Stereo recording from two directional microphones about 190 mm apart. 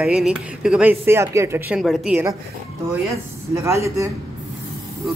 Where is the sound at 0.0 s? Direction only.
5° right (ahead or behind).